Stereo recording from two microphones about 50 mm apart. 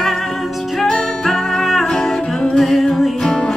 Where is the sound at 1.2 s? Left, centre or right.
Centre.